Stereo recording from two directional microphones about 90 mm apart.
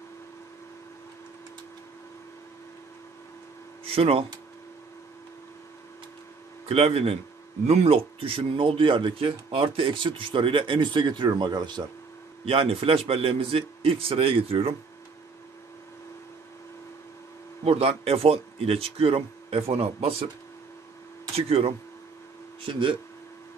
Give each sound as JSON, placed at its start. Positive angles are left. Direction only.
{"t": 3.9, "sound": "speech", "side_deg": -90}
{"t": 6.7, "sound": "speech", "side_deg": -90}
{"t": 12.4, "sound": "speech", "side_deg": -90}
{"t": 17.6, "sound": "speech", "side_deg": -90}
{"t": 21.4, "sound": "speech", "side_deg": -90}
{"t": 22.6, "sound": "speech", "side_deg": -70}